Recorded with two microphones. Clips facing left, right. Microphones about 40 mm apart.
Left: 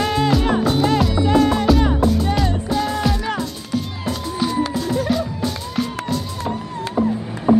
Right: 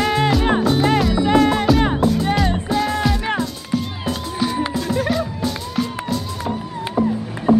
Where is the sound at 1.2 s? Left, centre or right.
Right.